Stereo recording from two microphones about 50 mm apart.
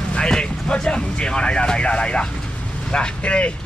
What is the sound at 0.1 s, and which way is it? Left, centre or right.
Speech, centre.